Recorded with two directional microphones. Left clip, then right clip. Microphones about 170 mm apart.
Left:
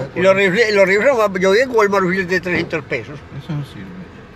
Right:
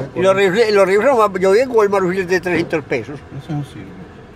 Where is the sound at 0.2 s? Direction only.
15° right (ahead or behind).